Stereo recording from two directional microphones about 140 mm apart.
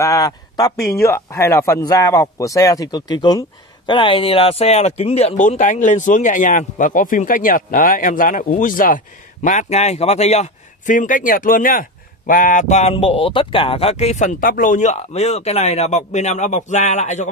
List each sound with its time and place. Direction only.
0.0 s speech: 25° left (ahead or behind); by 5.3 s 45° left (ahead or behind)
5.4 s a man's voice: 65° left (ahead or behind)